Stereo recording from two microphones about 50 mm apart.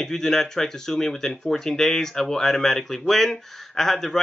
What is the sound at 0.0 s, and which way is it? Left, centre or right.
Speech, centre.